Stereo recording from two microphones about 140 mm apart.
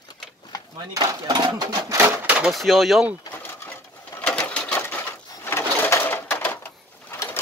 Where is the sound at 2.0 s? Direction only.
10° right (ahead or behind).